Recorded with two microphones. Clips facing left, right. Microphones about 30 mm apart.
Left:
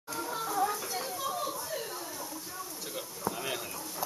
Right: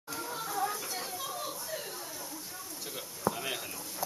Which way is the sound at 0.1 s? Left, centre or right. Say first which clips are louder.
Left 3 dB; centre.